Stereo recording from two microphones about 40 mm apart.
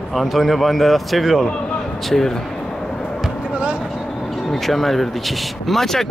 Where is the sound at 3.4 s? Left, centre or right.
Right.